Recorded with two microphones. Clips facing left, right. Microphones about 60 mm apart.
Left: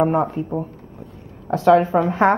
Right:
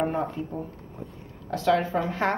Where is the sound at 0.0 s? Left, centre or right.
Left.